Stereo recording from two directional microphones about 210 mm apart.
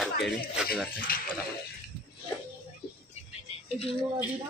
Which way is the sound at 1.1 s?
45° left (ahead or behind).